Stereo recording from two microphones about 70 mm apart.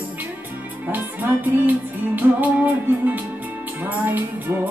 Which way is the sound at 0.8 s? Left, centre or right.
Right.